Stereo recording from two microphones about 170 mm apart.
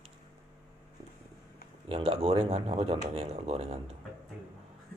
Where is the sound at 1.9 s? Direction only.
35° right (ahead or behind).